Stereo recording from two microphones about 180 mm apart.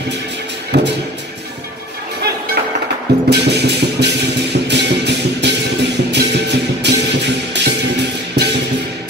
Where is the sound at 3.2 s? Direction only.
70° right (ahead or behind).